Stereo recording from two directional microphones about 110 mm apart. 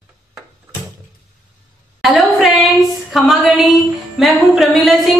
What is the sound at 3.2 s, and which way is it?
A woman's voice, centre (ahead or behind).